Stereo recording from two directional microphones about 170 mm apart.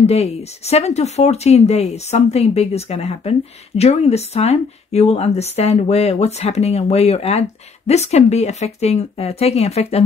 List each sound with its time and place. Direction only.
0.0 s speech: 40° left (ahead or behind)